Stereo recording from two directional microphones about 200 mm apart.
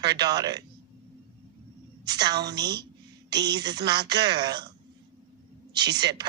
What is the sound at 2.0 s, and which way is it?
Speech, 20° right (ahead or behind).